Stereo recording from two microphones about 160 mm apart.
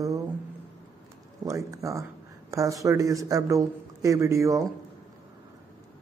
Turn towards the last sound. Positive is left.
turn(degrees=-20)  # may be behind; listen again after turning